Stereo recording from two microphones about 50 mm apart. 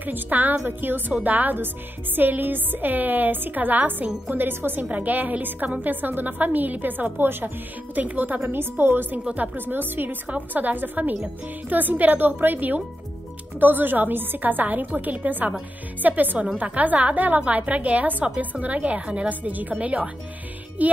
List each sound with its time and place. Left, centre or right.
0.0 s a woman's voice: right
4.8 s a woman's voice: right
19.2 s a woman's voice: right